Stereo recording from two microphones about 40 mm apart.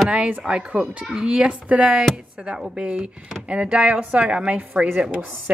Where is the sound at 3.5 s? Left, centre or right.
Right.